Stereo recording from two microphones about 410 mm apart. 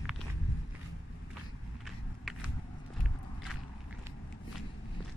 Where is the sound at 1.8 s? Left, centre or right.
Centre.